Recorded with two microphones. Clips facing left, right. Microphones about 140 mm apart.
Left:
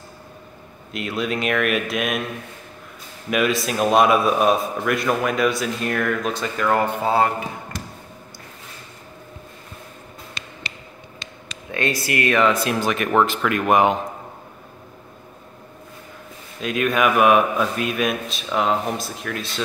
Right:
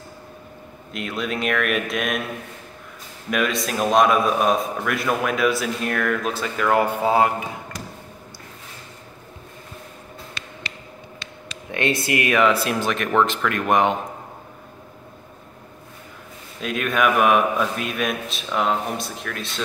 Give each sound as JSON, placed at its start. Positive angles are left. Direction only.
{"t": 0.9, "sound": "a man's voice", "side_deg": 0}
{"t": 3.3, "sound": "a man's voice", "side_deg": 5}
{"t": 11.7, "sound": "speech", "side_deg": -25}
{"t": 12.3, "sound": "a man's voice", "side_deg": -5}
{"t": 16.6, "sound": "a man's voice", "side_deg": 0}